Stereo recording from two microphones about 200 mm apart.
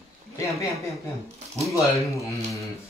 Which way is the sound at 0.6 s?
15° left (ahead or behind).